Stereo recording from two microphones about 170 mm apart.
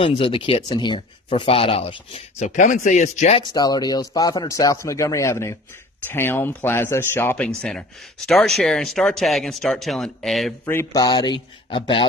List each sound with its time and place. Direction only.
0.0 s speech: 30° left (ahead or behind)
3.5 s speech: 25° left (ahead or behind); by 10.5 s centre (ahead or behind)
10.6 s speech: 15° left (ahead or behind)